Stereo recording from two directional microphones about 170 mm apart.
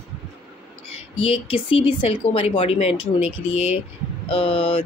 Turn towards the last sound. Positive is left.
turn(degrees=35)  # may be behind; listen again after turning